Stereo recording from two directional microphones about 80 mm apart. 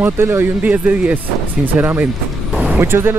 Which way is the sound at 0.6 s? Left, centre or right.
Centre.